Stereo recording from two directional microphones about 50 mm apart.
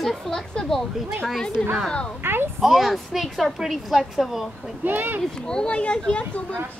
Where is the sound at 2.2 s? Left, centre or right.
Right.